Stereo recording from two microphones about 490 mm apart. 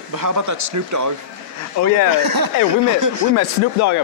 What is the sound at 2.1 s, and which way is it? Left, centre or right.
Speech, right.